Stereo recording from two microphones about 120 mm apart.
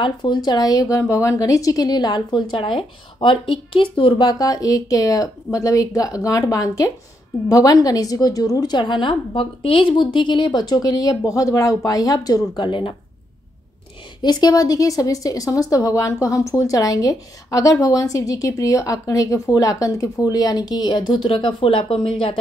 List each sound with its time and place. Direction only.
0.0 s a woman's voice: 40° left (ahead or behind)
14.2 s a woman's voice: 35° left (ahead or behind)